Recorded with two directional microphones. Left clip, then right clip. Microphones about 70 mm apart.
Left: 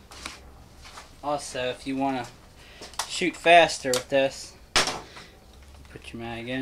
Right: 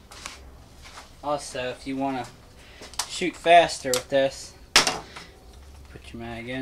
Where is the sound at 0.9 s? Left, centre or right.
Centre.